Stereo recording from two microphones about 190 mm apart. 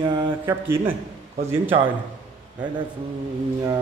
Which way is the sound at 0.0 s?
25° right (ahead or behind).